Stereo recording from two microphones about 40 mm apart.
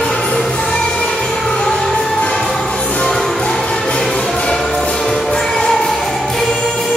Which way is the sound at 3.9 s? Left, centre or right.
Centre.